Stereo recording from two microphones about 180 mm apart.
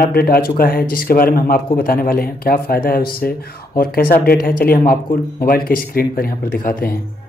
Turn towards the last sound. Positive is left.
turn(degrees=50)  # may be behind; listen again after turning